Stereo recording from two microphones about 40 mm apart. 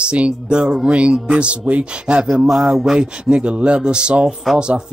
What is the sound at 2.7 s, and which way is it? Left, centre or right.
Speech, centre.